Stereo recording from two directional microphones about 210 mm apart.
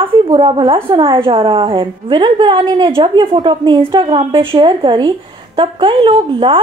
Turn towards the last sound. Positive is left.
turn(degrees=-20)  # may be behind; listen again after turning